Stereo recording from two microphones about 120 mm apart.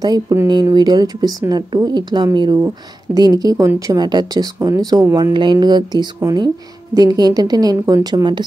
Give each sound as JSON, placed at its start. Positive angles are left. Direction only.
{"t": 0.0, "sound": "speech", "side_deg": -30}